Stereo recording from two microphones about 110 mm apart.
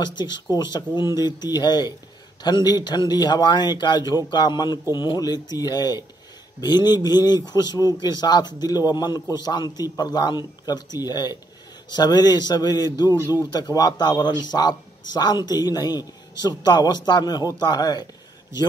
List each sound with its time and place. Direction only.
0.0 s a man's voice: 40° left (ahead or behind)